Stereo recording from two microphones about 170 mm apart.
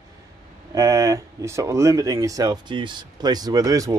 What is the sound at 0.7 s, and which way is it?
Speech, 20° right (ahead or behind).